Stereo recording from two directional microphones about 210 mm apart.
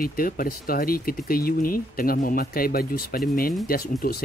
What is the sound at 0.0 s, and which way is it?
Speech, 45° left (ahead or behind).